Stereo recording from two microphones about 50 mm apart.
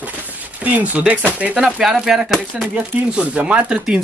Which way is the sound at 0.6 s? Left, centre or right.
Right.